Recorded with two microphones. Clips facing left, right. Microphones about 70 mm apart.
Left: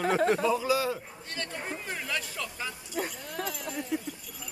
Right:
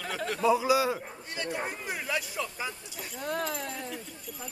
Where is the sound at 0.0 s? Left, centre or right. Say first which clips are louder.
Left 6 dB; left.